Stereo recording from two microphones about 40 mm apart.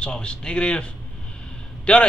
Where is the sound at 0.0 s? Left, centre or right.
Left.